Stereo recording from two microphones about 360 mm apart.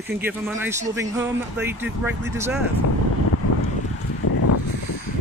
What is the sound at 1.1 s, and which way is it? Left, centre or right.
Speech, centre.